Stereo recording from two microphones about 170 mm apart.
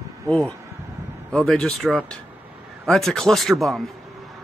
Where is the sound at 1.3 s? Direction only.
5° left (ahead or behind).